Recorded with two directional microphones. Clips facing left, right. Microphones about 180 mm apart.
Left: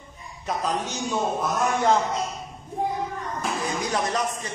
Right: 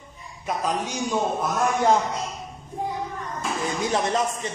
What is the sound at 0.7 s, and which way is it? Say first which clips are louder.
Speech: right 2 dB; 10° right (ahead or behind).